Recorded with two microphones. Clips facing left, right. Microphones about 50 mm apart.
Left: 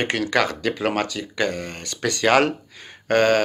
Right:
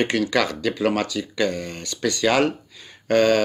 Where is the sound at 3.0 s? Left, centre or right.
Left.